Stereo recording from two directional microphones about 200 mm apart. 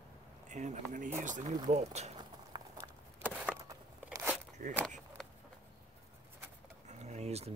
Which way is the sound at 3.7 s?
10° right (ahead or behind).